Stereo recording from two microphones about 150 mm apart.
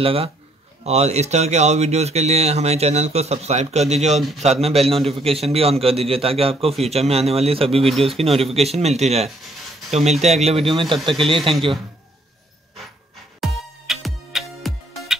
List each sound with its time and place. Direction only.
0.0 s a man's voice: 40° right (ahead or behind)
13.4 s music: centre (ahead or behind)